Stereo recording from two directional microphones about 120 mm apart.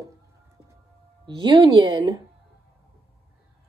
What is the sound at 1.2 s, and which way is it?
Speech, 40° right (ahead or behind).